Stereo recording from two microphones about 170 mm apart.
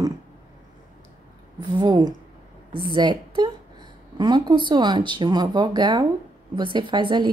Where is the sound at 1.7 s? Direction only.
25° right (ahead or behind).